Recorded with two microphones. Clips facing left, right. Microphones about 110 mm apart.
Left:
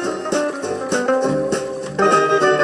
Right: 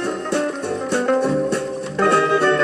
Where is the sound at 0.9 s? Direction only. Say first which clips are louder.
Left 1 dB; 25° left (ahead or behind).